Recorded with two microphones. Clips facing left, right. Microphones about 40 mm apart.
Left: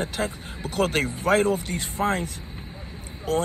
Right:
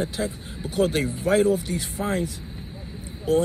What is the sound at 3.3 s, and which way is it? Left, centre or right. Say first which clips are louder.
Speech: right 4 dB; left.